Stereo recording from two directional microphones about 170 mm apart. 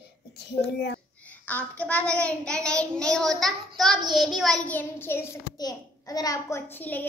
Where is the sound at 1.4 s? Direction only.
10° left (ahead or behind).